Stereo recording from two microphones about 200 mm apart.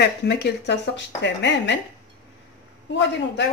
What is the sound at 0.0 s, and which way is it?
Dishes, 55° left (ahead or behind).